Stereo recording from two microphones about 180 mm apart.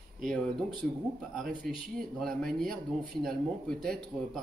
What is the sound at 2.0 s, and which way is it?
Speech, 5° left (ahead or behind).